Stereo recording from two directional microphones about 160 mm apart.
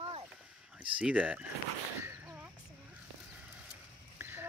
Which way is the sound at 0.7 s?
5° right (ahead or behind).